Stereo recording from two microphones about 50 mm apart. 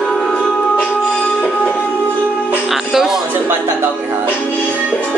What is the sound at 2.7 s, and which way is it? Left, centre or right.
Music, centre.